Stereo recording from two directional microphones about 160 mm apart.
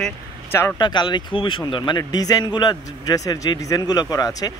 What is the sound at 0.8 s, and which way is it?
A man's voice, 30° left (ahead or behind).